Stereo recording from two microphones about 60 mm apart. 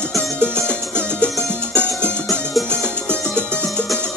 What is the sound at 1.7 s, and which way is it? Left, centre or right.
Music, centre.